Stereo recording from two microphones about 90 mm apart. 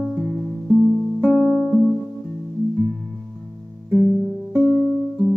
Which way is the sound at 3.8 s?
20° right (ahead or behind).